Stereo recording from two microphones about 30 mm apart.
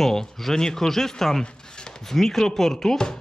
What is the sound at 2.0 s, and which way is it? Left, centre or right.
Speech, centre.